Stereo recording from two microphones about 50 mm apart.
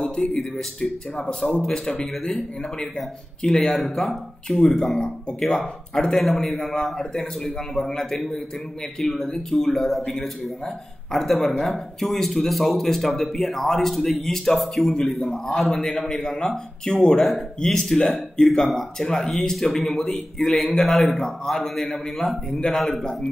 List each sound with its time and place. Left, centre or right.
0.2 s speech: centre